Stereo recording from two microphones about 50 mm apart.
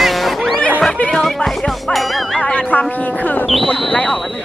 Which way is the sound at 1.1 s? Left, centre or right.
Centre.